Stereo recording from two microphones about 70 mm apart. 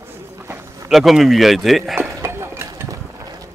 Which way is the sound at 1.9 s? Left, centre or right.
Right.